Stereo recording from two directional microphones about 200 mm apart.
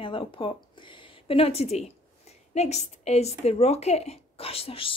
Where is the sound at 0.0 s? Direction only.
25° left (ahead or behind).